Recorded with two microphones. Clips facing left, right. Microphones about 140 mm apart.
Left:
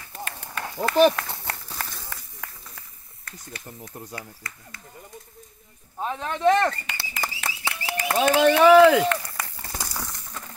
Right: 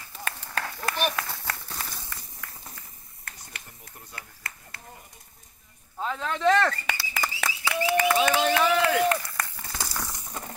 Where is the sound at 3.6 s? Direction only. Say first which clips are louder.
Left 10 dB; 35° left (ahead or behind).